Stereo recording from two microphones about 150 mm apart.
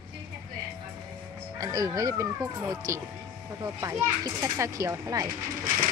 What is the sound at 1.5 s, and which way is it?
A child's voice, 25° right (ahead or behind).